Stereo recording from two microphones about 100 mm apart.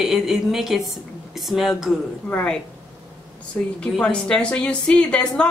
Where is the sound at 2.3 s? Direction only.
15° left (ahead or behind).